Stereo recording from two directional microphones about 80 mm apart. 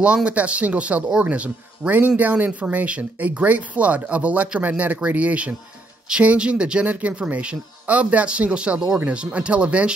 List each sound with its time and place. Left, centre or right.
0.0 s speech: centre